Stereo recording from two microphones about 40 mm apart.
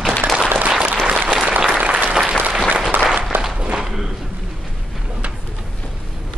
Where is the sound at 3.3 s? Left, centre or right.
Right.